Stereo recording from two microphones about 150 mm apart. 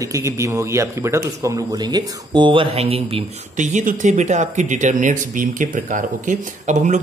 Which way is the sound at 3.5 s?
55° right (ahead or behind).